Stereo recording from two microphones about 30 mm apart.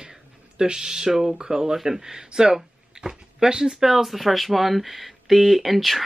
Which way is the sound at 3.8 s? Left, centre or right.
Centre.